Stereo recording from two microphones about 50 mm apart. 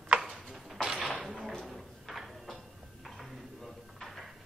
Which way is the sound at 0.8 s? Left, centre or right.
Centre.